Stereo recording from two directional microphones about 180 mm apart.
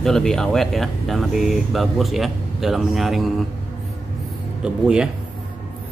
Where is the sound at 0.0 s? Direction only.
5° left (ahead or behind).